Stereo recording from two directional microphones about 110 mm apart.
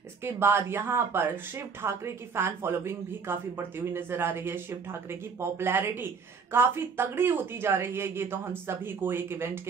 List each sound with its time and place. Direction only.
0.2 s speech: 20° right (ahead or behind)